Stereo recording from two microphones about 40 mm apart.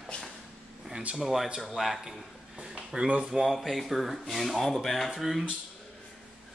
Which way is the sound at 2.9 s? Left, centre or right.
Right.